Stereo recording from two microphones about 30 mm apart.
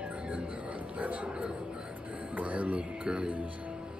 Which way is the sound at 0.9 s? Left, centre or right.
Right.